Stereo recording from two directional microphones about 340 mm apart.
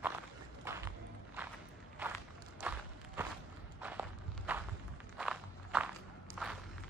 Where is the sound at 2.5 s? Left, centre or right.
Centre.